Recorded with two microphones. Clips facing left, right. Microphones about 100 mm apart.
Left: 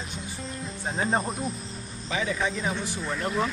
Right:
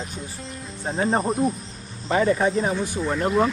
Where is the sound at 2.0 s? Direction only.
50° right (ahead or behind).